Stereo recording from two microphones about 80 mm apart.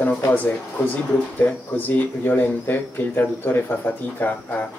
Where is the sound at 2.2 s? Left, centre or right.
Left.